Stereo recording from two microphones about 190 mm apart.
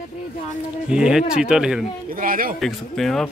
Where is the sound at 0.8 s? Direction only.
5° right (ahead or behind).